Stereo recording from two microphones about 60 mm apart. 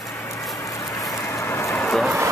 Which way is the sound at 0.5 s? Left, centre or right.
Left.